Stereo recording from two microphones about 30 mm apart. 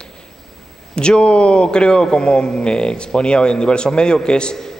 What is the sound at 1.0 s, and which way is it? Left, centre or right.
A man's voice, left.